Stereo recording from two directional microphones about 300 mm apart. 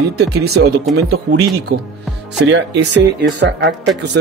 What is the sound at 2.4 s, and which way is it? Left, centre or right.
Speech, right.